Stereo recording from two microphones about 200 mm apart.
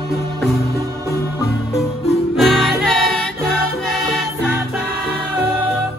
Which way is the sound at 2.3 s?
Centre (ahead or behind).